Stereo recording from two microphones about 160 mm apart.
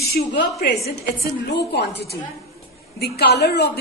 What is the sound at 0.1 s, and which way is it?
A woman's voice, 75° left (ahead or behind).